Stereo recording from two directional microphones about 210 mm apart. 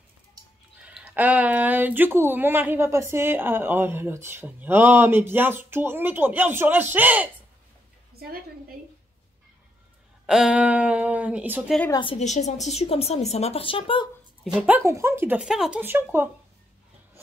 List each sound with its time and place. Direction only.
0.8 s speech: 5° right (ahead or behind)
10.2 s speech: 5° right (ahead or behind)
11.9 s a woman's voice: 25° left (ahead or behind)
14.4 s speech: 5° right (ahead or behind)